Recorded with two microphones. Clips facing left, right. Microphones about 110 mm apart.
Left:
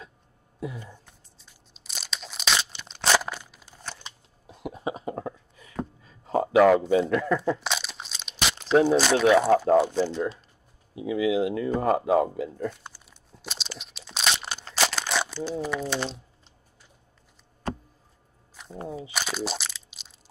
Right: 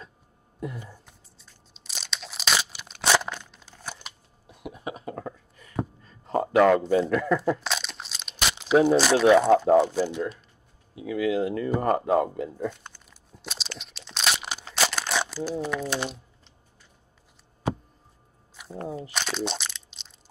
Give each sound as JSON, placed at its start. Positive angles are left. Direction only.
{"t": 0.9, "sound": "crumpling", "side_deg": 0}
{"t": 4.5, "sound": "cough", "side_deg": 25}
{"t": 5.2, "sound": "a sound", "side_deg": 5}
{"t": 6.0, "sound": "speech", "side_deg": 0}
{"t": 11.1, "sound": "speech", "side_deg": 10}
{"t": 12.8, "sound": "tearing", "side_deg": 10}
{"t": 13.4, "sound": "crunch", "side_deg": 0}
{"t": 14.3, "sound": "crumpling", "side_deg": -5}
{"t": 18.9, "sound": "crunch", "side_deg": 0}